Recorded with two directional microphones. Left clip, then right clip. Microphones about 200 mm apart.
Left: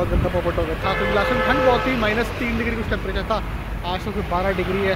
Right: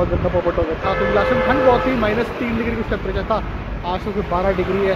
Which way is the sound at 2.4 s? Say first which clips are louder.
Right 2 dB; 35° right (ahead or behind).